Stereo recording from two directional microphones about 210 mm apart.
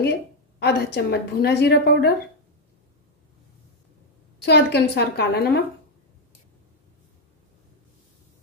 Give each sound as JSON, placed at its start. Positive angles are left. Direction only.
{"t": 0.0, "sound": "a woman's voice", "side_deg": 55}
{"t": 4.5, "sound": "a woman's voice", "side_deg": 50}